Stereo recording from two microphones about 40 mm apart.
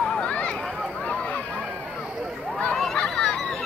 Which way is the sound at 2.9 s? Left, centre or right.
Left.